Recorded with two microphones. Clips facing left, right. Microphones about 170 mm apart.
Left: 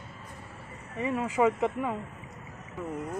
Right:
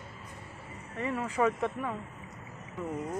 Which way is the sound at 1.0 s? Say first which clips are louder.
Left 3 dB; 15° left (ahead or behind).